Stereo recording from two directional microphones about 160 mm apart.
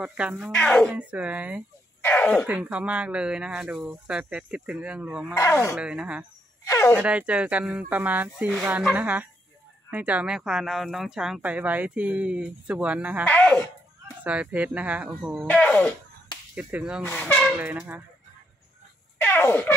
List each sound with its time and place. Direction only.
0.0 s speech: 5° right (ahead or behind)
0.6 s speech: 5° left (ahead or behind)
0.9 s speech: 10° right (ahead or behind)
2.0 s throat clearing: 10° left (ahead or behind)
2.4 s speech: 10° right (ahead or behind)
6.6 s a sound: 15° left (ahead or behind)
7.0 s speech: 10° right (ahead or behind)
13.3 s music: 10° left (ahead or behind)
14.2 s speech: 10° right (ahead or behind)
15.4 s speech: 10° left (ahead or behind)
16.5 s speech: 5° right (ahead or behind)
17.1 s speech: 10° left (ahead or behind)
17.6 s speech: 10° right (ahead or behind)
19.1 s fart: 10° left (ahead or behind)